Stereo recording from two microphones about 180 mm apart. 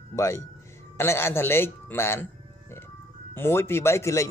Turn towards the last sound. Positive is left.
turn(degrees=15)  # may be behind; listen again after turning